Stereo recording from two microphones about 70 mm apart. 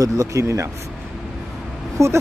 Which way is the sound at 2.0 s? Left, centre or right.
Right.